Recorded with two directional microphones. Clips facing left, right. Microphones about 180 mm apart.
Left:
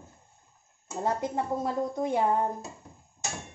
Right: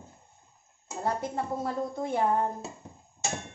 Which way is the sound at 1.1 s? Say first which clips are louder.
Left 1 dB; 20° left (ahead or behind).